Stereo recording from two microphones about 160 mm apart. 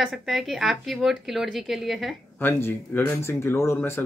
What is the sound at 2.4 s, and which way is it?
Speech, 15° left (ahead or behind).